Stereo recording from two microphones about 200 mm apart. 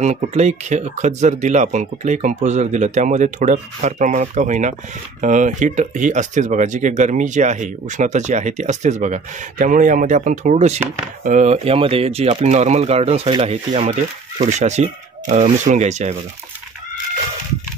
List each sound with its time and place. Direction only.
0.0 s speech: 35° right (ahead or behind)